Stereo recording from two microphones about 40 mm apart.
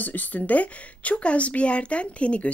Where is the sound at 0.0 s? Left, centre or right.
Left.